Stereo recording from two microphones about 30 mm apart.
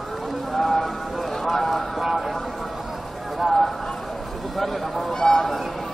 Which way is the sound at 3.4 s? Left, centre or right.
Centre.